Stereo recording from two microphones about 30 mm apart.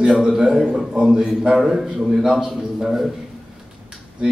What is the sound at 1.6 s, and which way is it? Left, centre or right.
A man's voice, centre.